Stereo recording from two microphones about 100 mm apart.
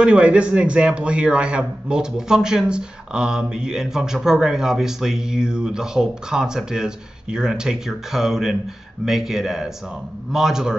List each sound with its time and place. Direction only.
0.0 s a man's voice: 10° right (ahead or behind)